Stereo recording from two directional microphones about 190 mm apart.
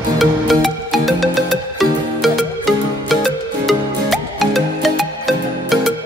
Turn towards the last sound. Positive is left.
turn(degrees=0)  # may be behind; listen again after turning